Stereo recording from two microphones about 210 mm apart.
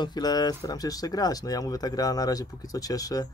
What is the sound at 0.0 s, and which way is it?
Speech, 20° left (ahead or behind).